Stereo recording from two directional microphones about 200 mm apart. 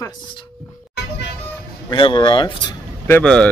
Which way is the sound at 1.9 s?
25° left (ahead or behind).